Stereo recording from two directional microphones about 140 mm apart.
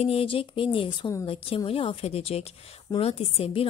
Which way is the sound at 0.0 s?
45° left (ahead or behind).